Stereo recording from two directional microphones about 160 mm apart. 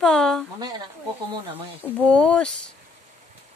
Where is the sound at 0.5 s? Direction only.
25° right (ahead or behind).